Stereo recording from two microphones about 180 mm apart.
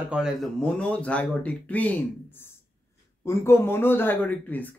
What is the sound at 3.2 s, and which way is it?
Speech, 15° left (ahead or behind).